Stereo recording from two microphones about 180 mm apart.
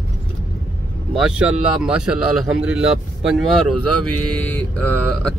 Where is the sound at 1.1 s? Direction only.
5° right (ahead or behind).